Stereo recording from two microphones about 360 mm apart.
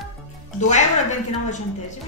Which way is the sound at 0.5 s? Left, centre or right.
Centre.